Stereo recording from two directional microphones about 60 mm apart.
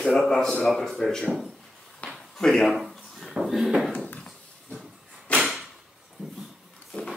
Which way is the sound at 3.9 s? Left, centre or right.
Left.